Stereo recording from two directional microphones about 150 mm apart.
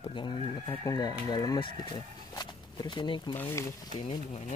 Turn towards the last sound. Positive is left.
turn(degrees=50)  # may be behind; listen again after turning